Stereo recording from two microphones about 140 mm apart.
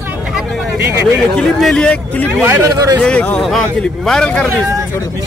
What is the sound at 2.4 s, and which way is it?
Speech, 20° right (ahead or behind).